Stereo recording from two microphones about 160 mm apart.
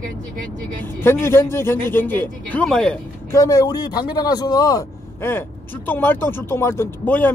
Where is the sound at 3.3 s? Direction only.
20° left (ahead or behind).